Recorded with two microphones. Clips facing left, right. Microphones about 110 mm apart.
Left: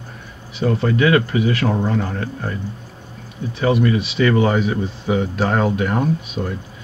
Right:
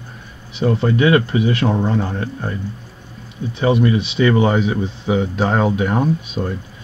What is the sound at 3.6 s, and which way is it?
Speech, 20° right (ahead or behind).